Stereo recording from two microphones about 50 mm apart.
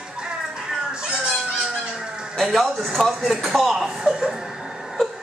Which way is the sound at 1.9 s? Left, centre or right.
Centre.